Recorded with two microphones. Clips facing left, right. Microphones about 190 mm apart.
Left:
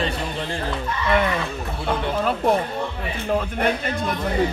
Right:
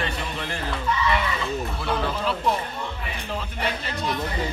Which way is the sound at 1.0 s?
55° left (ahead or behind).